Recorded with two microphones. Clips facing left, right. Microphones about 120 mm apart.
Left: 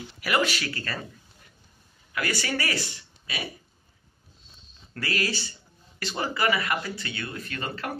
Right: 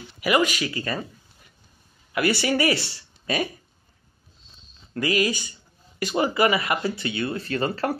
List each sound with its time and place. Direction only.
0.2 s speech: 10° right (ahead or behind)
2.1 s speech: 25° right (ahead or behind)
3.3 s speech: 45° right (ahead or behind)
4.9 s speech: 15° right (ahead or behind); by 8.0 s 35° right (ahead or behind)